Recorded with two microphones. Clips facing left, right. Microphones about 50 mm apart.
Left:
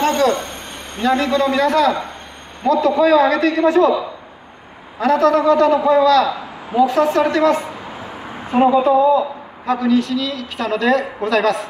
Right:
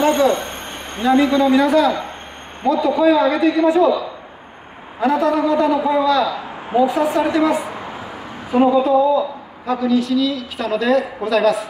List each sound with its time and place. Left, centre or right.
0.0 s speech: centre
1.0 s a man's voice: centre
3.6 s a man's voice: left
5.0 s a man's voice: centre
8.5 s speech: centre
8.8 s a man's voice: centre